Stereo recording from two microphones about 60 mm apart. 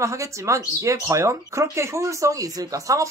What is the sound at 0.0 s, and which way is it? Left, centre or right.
Speech, right.